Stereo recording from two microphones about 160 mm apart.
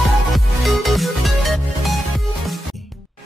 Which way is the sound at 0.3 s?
Centre (ahead or behind).